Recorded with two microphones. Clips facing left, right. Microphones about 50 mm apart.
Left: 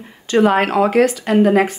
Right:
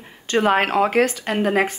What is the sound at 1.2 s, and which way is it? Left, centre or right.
Speech, centre.